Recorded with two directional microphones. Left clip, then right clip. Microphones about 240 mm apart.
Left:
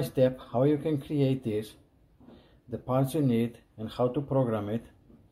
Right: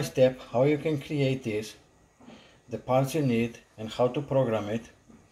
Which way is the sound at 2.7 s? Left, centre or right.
Centre.